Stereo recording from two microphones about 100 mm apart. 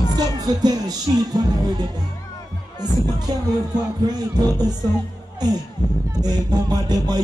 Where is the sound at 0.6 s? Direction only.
40° right (ahead or behind).